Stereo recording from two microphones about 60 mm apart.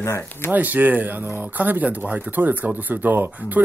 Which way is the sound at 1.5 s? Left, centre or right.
Right.